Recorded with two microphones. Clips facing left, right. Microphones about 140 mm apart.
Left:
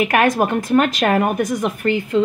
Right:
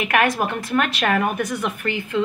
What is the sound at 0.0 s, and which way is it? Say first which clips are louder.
A woman's voice: left 4 dB; 40° left (ahead or behind).